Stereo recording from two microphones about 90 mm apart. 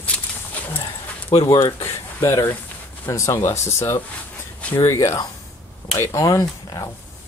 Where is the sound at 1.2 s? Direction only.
90° left.